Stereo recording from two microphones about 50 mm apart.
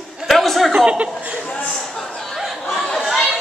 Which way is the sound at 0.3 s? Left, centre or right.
Centre.